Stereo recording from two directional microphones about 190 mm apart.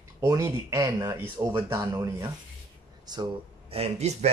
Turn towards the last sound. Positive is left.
turn(degrees=-35)  # may be behind; listen again after turning